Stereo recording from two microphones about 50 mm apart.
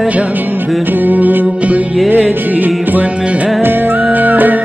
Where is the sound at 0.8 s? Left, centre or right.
Right.